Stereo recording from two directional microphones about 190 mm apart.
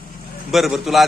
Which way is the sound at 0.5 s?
Centre (ahead or behind).